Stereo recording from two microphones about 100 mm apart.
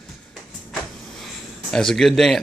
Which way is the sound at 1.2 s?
5° left (ahead or behind).